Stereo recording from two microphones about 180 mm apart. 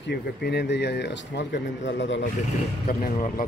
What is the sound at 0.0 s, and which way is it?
Speech, 65° left (ahead or behind).